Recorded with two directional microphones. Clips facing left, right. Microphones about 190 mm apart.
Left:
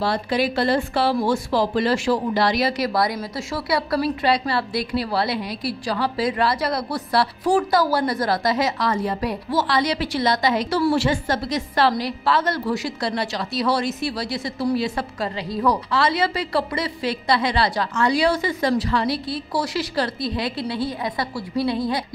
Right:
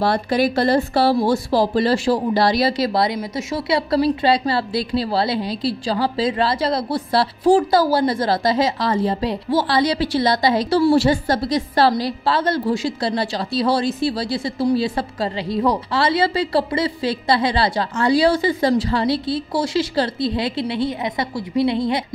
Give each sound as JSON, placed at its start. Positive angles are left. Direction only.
{"t": 0.0, "sound": "a woman's voice", "side_deg": -50}